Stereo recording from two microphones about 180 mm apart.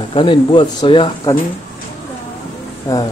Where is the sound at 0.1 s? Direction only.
25° left (ahead or behind).